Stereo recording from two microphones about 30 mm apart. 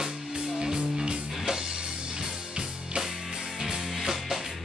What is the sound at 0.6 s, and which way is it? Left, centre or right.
Music, right.